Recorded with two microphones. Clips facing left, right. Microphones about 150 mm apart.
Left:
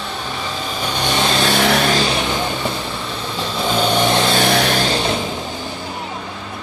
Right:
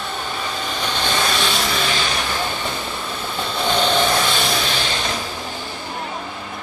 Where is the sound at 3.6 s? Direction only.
5° left (ahead or behind).